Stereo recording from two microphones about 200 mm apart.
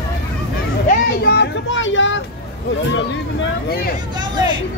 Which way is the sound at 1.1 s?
55° left (ahead or behind).